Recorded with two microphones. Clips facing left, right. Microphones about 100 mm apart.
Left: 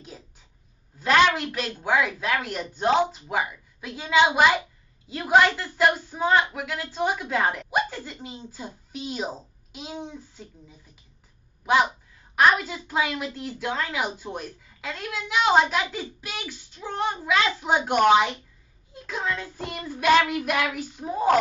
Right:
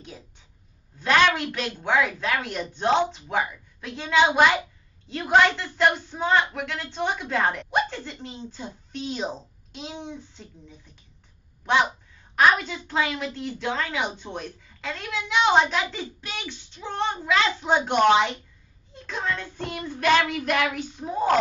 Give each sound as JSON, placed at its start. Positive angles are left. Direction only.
{"t": 0.9, "sound": "a woman's voice", "side_deg": 5}